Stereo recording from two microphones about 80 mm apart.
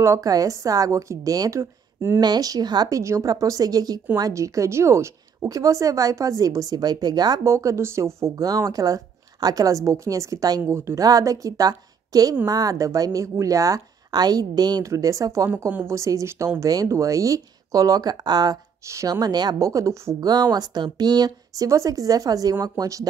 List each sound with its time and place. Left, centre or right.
0.2 s a woman's voice: right
1.6 s speech: right
2.1 s speech: right
3.0 s a woman's voice: right
7.4 s a woman's voice: right
14.8 s a woman's voice: right
18.9 s a woman's voice: right
19.7 s a woman's voice: right
20.2 s speech: right
21.6 s a woman's voice: right